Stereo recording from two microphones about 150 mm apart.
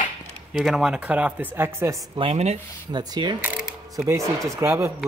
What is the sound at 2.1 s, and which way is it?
Speech, 40° right (ahead or behind).